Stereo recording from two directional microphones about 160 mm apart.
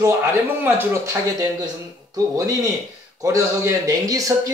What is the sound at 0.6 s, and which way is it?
A man's voice, 15° right (ahead or behind).